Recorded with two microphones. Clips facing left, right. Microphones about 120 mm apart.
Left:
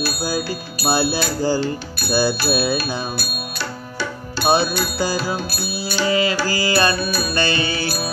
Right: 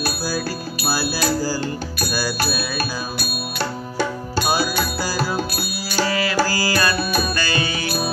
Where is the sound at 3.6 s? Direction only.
50° right (ahead or behind).